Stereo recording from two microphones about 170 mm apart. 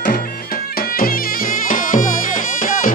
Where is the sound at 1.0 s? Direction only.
55° left (ahead or behind).